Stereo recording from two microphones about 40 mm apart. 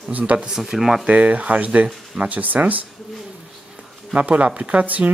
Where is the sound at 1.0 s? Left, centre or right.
Right.